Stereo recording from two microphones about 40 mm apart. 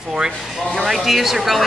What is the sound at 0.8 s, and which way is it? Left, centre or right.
Speech, centre.